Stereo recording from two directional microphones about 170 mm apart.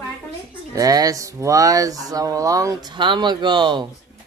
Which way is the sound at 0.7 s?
20° right (ahead or behind).